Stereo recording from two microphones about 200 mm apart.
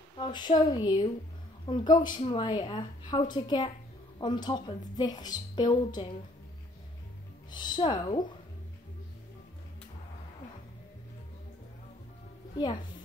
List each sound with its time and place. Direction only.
0.2 s a woman's voice: 20° left (ahead or behind)
7.5 s a woman's voice: 20° left (ahead or behind)
12.5 s a woman's voice: 20° left (ahead or behind)